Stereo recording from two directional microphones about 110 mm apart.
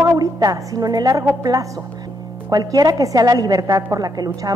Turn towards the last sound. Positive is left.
turn(degrees=-35)  # may be behind; listen again after turning